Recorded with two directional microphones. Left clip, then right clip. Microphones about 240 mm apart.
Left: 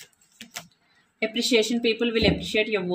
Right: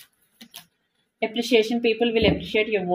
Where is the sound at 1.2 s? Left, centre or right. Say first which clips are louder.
Right 2 dB; centre.